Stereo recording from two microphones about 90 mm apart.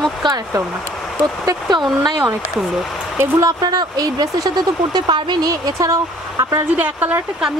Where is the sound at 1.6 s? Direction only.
55° right (ahead or behind).